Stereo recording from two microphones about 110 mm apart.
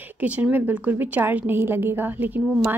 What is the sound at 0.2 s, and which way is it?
A woman's voice, 15° right (ahead or behind).